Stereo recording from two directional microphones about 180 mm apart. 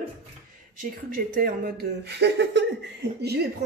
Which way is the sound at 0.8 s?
50° right (ahead or behind).